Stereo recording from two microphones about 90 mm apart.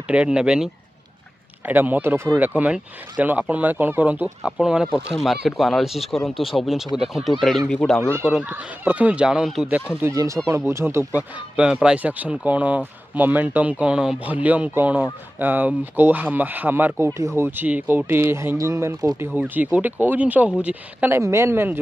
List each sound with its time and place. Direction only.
0.1 s speech: 10° right (ahead or behind)
1.7 s speech: 20° right (ahead or behind); by 8.0 s 5° left (ahead or behind)
8.0 s speech: 30° right (ahead or behind)
8.5 s speech: 20° right (ahead or behind)
10.1 s speech: 35° right (ahead or behind)
11.5 s speech: 10° right (ahead or behind); by 18.9 s 35° right (ahead or behind)
19.1 s speech: 20° right (ahead or behind)
21.1 s speech: 30° right (ahead or behind)